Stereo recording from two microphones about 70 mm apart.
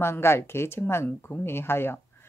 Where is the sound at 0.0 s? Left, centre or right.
Left.